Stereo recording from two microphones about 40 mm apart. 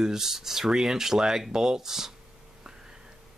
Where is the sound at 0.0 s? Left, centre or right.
Centre.